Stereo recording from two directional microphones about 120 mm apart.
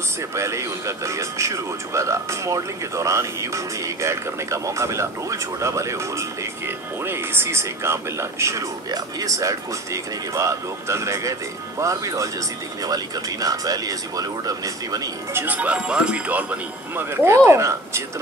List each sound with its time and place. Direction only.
0.3 s speech: 25° right (ahead or behind)
15.3 s speech: 15° right (ahead or behind)